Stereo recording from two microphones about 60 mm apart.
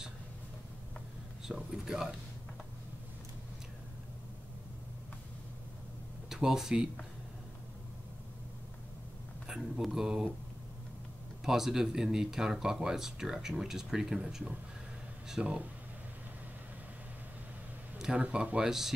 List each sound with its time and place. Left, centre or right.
1.5 s speech: centre
6.2 s speech: centre
9.5 s speech: centre
11.4 s speech: centre
17.9 s a sound: centre
18.2 s speech: right
18.7 s speech: centre